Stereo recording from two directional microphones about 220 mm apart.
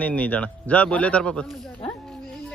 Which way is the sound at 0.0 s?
5° left (ahead or behind).